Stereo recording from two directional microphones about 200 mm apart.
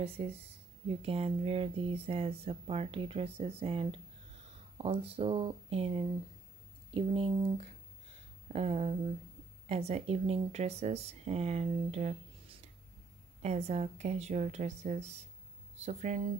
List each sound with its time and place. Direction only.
0.2 s speech: 30° right (ahead or behind)